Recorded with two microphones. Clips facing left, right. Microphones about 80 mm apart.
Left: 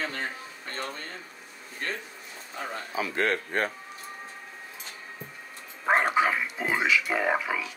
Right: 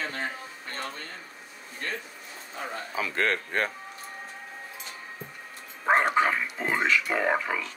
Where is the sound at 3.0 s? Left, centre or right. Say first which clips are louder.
Even; right.